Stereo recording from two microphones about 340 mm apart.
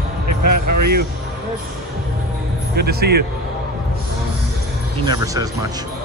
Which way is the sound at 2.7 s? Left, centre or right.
Right.